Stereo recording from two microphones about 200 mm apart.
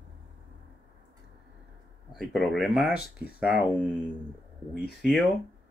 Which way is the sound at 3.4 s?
5° right (ahead or behind).